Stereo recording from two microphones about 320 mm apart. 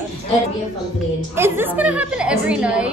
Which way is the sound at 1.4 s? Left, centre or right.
Centre.